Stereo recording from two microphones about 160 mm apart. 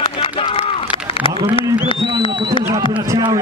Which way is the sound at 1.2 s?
35° left (ahead or behind).